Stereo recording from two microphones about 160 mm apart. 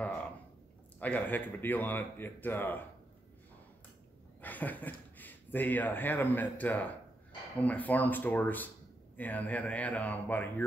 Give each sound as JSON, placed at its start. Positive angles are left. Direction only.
{"t": 0.9, "sound": "a man's voice", "side_deg": 10}
{"t": 4.4, "sound": "a man's voice", "side_deg": 10}